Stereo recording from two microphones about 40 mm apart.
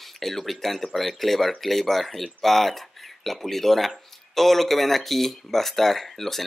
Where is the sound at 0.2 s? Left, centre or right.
Centre.